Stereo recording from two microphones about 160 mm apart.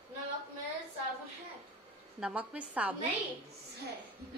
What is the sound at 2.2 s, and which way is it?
Speech, 10° right (ahead or behind).